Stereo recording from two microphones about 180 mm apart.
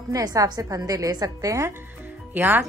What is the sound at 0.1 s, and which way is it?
A woman's voice, 20° right (ahead or behind).